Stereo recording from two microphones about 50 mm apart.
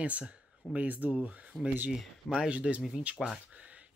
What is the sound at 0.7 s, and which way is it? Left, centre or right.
Speech, right.